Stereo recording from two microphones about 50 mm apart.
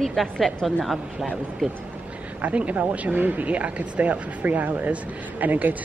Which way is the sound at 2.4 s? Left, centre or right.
Right.